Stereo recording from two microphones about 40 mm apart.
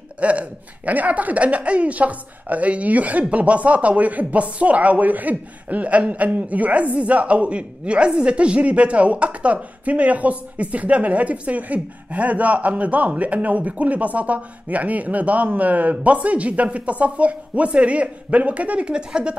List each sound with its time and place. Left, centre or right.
0.2 s a woman's voice: right
18.9 s speech: right